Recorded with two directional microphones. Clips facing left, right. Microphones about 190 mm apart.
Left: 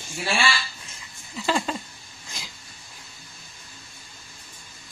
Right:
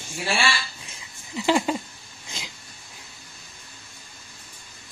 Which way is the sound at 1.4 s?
15° right (ahead or behind).